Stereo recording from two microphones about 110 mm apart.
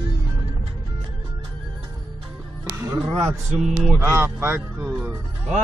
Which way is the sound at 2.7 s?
25° right (ahead or behind).